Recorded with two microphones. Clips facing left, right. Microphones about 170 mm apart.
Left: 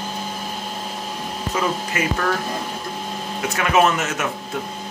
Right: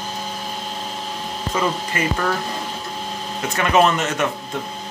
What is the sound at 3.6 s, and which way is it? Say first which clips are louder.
Speech: right 1 dB; 5° left (ahead or behind).